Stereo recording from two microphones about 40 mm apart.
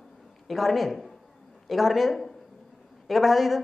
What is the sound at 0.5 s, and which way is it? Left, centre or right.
A man's voice, centre.